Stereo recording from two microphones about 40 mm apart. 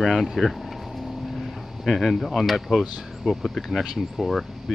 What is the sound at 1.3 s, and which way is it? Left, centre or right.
Vehicle, centre.